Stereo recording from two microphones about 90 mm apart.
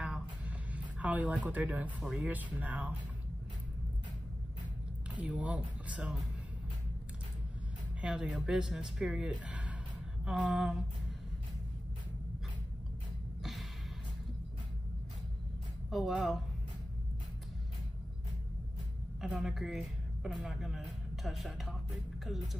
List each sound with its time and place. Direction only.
0.0 s a sound: 10° right (ahead or behind)
2.0 s speech: 15° right (ahead or behind)
5.1 s speech: 15° right (ahead or behind)
8.0 s speech: 10° right (ahead or behind)
13.4 s a sound: centre (ahead or behind)
15.9 s speech: centre (ahead or behind)
19.2 s speech: centre (ahead or behind)